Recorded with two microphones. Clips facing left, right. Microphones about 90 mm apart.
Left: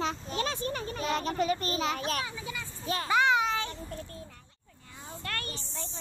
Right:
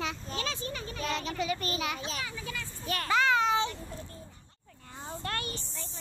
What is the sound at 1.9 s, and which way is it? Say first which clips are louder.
Speech: left 5 dB; 55° left (ahead or behind).